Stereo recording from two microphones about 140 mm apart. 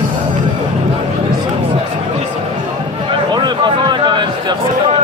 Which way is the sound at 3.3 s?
30° right (ahead or behind).